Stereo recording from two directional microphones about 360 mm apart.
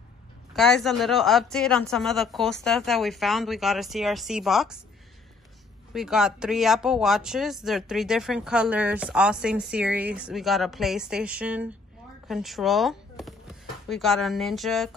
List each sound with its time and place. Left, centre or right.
0.5 s speech: centre
5.9 s speech: centre